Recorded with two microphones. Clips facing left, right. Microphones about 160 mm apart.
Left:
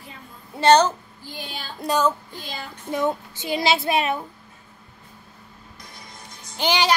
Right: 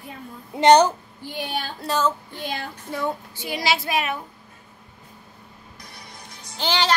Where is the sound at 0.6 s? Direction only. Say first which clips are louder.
Right 2 dB; 15° right (ahead or behind).